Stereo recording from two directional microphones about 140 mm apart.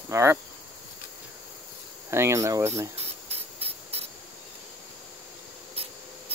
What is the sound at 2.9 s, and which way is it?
Spray, 45° right (ahead or behind).